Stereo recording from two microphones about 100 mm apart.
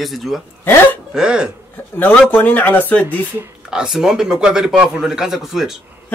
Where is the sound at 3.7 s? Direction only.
5° right (ahead or behind).